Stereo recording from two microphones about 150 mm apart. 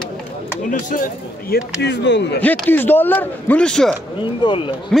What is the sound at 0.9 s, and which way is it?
Speech, 75° left (ahead or behind).